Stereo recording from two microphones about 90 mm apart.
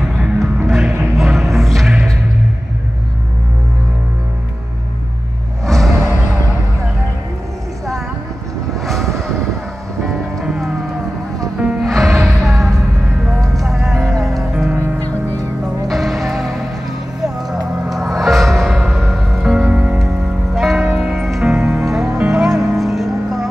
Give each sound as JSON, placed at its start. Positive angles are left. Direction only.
{"t": 0.7, "sound": "music", "side_deg": 0}
{"t": 5.7, "sound": "music", "side_deg": 5}
{"t": 5.9, "sound": "music", "side_deg": -35}
{"t": 8.8, "sound": "vehicle", "side_deg": 5}
{"t": 10.0, "sound": "music", "side_deg": 0}
{"t": 11.8, "sound": "music", "side_deg": 0}
{"t": 15.9, "sound": "music", "side_deg": 0}
{"t": 17.8, "sound": "music", "side_deg": 0}